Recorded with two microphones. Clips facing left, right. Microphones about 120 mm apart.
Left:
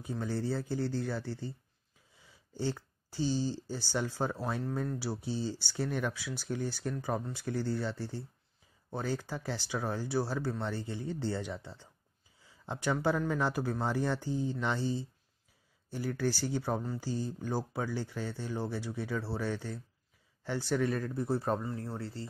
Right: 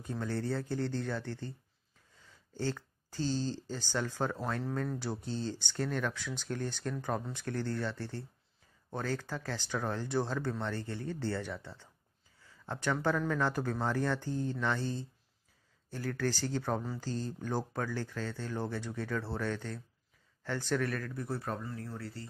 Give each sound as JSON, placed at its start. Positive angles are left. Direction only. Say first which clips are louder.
{"t": 0.0, "sound": "speech", "louder": "left 1 dB", "side_deg": 10}